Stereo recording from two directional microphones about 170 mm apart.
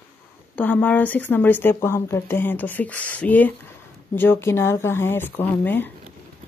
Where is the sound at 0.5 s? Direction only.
10° left (ahead or behind).